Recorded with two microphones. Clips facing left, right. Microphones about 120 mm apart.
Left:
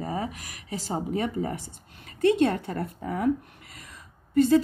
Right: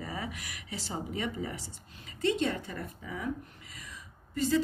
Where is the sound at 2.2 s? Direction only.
55° left (ahead or behind).